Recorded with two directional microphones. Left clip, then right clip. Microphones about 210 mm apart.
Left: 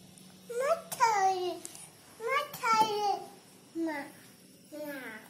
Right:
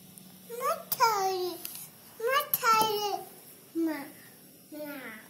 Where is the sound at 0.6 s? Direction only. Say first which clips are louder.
Right 1 dB; 10° left (ahead or behind).